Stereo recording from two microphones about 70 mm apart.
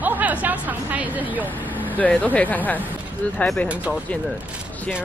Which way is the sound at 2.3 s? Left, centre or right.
Left.